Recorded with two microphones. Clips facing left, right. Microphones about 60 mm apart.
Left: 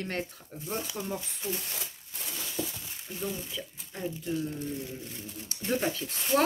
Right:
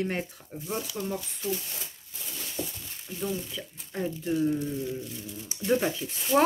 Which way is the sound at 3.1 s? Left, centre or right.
Centre.